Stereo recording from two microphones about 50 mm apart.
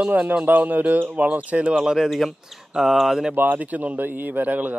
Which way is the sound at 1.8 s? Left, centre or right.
Centre.